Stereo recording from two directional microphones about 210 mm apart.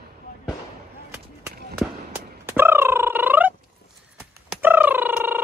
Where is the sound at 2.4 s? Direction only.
10° right (ahead or behind).